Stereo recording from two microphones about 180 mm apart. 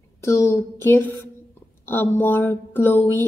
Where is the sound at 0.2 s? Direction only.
15° left (ahead or behind).